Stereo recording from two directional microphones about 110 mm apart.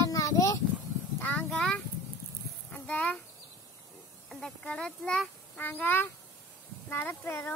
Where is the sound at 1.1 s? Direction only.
15° left (ahead or behind).